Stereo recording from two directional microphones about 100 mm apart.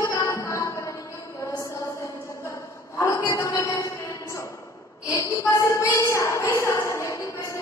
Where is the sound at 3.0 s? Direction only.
30° left (ahead or behind).